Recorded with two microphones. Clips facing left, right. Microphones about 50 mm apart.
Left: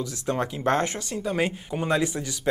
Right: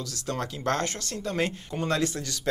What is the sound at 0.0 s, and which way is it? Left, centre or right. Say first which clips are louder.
Speech: left 5 dB; centre.